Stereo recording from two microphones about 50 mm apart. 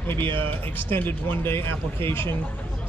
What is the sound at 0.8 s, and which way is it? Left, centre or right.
Speech, left.